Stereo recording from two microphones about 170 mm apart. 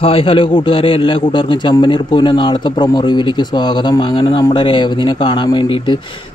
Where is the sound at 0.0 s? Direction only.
35° left (ahead or behind).